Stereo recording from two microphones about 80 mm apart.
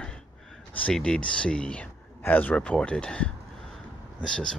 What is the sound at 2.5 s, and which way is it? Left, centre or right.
Speech, centre.